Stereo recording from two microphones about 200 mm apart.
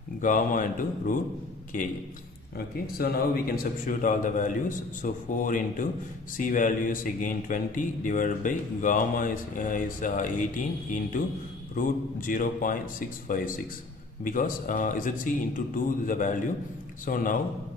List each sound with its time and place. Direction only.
0.2 s a man's voice: 40° left (ahead or behind)